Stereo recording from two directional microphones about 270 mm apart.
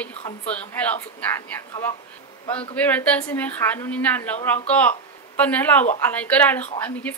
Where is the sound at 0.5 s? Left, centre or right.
Centre.